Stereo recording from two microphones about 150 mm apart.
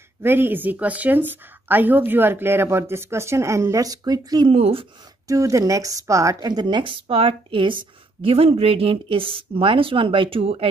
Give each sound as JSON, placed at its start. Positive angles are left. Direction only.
{"t": 0.2, "sound": "a woman's voice", "side_deg": -15}
{"t": 4.6, "sound": "speech", "side_deg": -40}
{"t": 5.3, "sound": "speech", "side_deg": -20}